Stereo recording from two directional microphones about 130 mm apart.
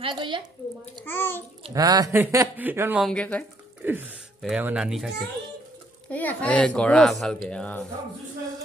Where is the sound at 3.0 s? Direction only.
10° left (ahead or behind).